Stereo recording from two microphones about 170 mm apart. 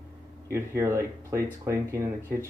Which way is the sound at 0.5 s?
15° right (ahead or behind).